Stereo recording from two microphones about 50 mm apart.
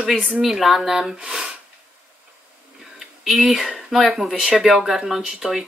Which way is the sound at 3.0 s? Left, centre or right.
Centre.